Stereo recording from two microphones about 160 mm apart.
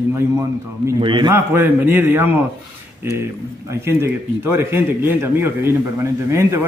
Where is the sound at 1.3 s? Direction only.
15° right (ahead or behind).